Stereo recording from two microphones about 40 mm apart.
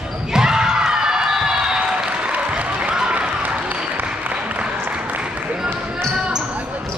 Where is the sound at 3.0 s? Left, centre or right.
Right.